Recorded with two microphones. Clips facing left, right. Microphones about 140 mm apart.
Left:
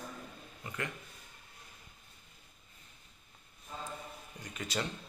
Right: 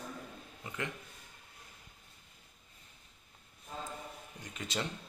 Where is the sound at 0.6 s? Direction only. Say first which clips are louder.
Even; 20° right (ahead or behind).